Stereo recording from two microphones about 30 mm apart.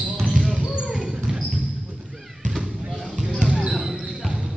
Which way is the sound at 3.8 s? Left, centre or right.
Centre.